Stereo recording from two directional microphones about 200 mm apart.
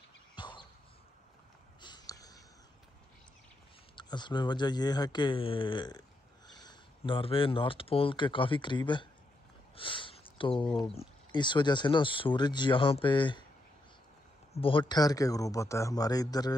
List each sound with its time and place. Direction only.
0.4 s bird: 25° left (ahead or behind)
1.8 s whispering: 20° left (ahead or behind)
3.9 s speech: 20° left (ahead or behind)
9.8 s a sound: 25° left (ahead or behind)
11.0 s speech: 25° left (ahead or behind)
14.6 s speech: 25° left (ahead or behind)